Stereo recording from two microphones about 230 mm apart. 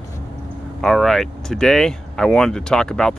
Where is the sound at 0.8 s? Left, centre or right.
Centre.